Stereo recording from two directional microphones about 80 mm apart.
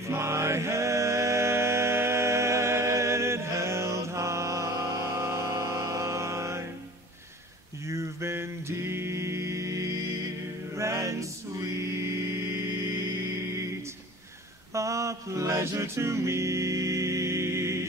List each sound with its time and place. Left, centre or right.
0.0 s music: right
7.8 s a sound: right
10.7 s music: right
14.7 s music: right